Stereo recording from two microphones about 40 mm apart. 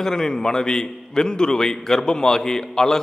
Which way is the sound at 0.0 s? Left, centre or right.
Centre.